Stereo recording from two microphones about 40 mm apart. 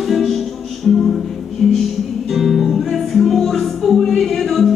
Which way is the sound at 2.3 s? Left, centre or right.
Centre.